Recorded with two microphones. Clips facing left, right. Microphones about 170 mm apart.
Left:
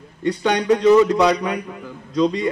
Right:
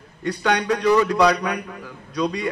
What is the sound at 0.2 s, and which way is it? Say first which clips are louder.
A man's voice: left 2 dB; 20° left (ahead or behind).